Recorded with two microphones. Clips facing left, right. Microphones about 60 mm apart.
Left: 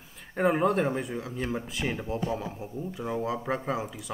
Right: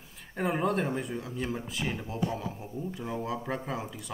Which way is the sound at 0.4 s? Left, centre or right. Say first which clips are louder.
Left 4 dB; centre.